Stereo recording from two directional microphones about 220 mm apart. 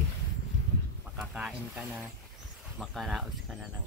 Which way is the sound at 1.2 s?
5° right (ahead or behind).